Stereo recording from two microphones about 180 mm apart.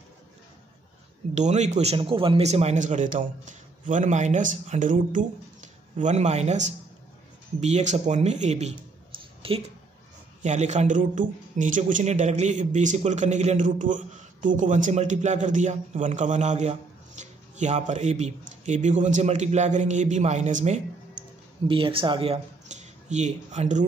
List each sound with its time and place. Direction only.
1.3 s a man's voice: 40° right (ahead or behind)
10.4 s a man's voice: 40° right (ahead or behind)
21.6 s speech: 30° right (ahead or behind)